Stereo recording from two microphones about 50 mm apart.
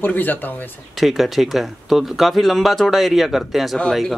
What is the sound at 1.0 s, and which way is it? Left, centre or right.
Speech, centre.